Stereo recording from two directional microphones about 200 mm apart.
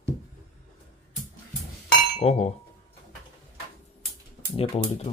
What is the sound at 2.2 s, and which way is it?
Speech, 30° left (ahead or behind).